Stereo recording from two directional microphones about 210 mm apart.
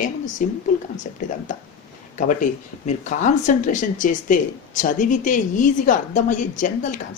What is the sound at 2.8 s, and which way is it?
Speech, 35° left (ahead or behind).